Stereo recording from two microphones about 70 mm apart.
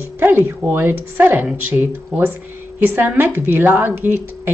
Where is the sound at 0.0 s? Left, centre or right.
Right.